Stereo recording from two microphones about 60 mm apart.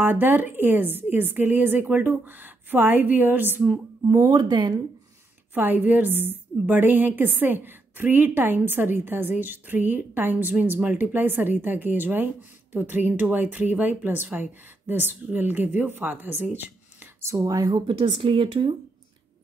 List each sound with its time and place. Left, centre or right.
0.0 s a woman's voice: right
4.1 s speech: right
5.5 s a woman's voice: right
17.4 s speech: right